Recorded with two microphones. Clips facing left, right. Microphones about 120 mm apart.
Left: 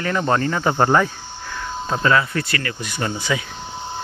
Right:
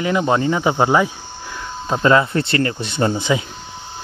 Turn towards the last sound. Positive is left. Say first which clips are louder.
# right 5 dB
turn(degrees=-25)  # may be behind; listen again after turning